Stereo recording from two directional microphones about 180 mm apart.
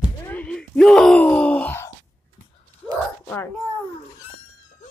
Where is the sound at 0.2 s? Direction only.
10° left (ahead or behind).